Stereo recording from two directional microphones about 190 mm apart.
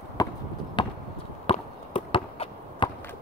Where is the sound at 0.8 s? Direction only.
25° left (ahead or behind).